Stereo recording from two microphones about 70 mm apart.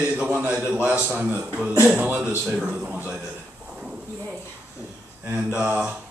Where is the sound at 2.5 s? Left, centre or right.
Centre.